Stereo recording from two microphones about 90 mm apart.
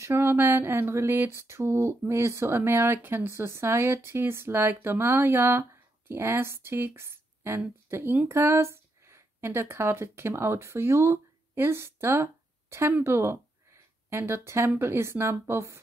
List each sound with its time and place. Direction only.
0.0 s speech: 25° right (ahead or behind)